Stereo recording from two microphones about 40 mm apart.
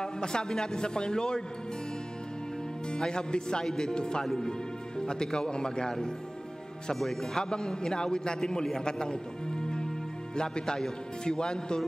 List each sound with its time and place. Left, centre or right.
0.0 s speech: centre
2.9 s a man's voice: centre
4.2 s speech: centre
4.5 s a man's voice: centre